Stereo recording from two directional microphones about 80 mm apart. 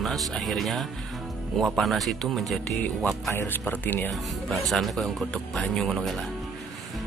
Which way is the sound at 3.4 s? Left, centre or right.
Left.